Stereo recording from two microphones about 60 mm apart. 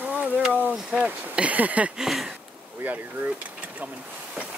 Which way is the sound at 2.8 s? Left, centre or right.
Right.